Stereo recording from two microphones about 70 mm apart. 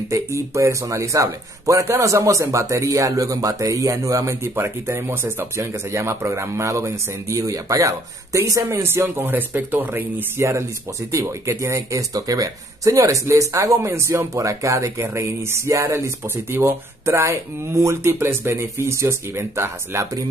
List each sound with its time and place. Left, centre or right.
0.1 s a man's voice: right
4.6 s speech: right
5.6 s a man's voice: right
8.6 s speech: right
11.1 s a man's voice: right
13.7 s a man's voice: right
16.5 s speech: right